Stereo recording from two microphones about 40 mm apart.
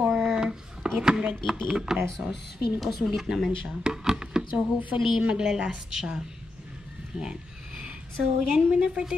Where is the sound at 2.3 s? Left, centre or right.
Centre.